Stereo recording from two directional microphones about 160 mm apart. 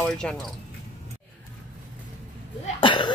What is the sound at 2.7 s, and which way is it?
Speech, 30° left (ahead or behind).